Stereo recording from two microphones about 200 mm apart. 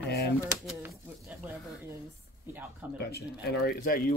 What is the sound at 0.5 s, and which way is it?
Speech, 10° right (ahead or behind).